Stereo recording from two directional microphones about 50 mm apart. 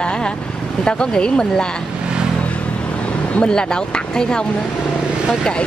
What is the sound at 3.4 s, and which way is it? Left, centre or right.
A woman's voice, centre.